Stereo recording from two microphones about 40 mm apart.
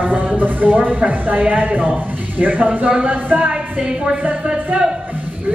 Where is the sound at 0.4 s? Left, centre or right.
Right.